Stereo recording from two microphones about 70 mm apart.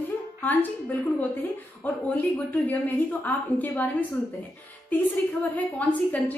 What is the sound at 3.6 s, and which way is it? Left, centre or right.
A woman's voice, left.